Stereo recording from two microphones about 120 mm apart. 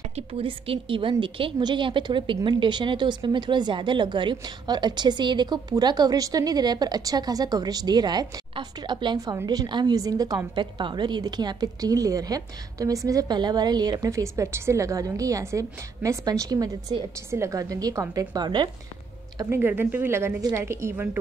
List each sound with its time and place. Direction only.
0.1 s a woman's voice: 50° right (ahead or behind)
19.5 s a woman's voice: 20° right (ahead or behind)